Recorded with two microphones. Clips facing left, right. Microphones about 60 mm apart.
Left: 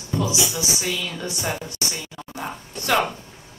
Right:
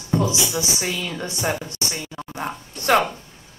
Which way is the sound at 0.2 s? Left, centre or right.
Right.